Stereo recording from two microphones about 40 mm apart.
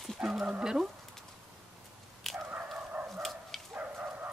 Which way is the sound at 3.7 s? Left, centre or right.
Right.